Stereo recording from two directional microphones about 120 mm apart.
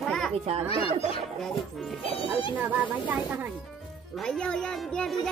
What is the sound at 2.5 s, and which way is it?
Speech, 10° right (ahead or behind).